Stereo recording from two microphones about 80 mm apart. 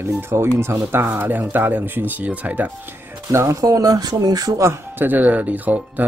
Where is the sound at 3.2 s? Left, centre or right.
Right.